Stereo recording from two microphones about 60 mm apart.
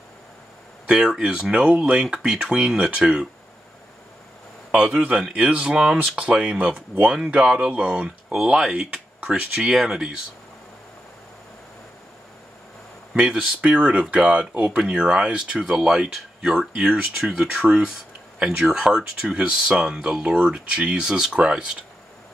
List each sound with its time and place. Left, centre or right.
0.9 s speech: centre
5.2 s speech: centre
13.3 s speech: centre
17.5 s speech: centre